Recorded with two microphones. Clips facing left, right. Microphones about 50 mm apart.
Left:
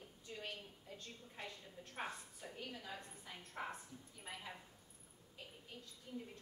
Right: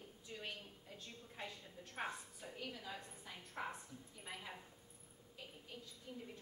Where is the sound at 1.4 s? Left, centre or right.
Centre.